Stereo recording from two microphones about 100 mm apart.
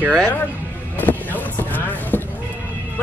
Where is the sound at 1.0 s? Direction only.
15° left (ahead or behind).